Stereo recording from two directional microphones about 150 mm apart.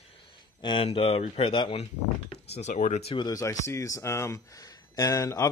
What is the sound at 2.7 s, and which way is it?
Speech, 60° left (ahead or behind).